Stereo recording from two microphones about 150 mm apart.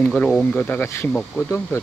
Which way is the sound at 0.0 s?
10° left (ahead or behind).